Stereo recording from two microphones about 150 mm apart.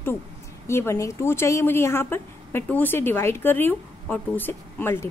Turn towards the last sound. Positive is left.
turn(degrees=15)  # may be behind; listen again after turning